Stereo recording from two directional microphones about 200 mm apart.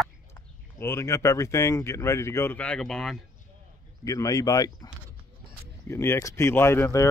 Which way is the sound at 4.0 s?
15° left (ahead or behind).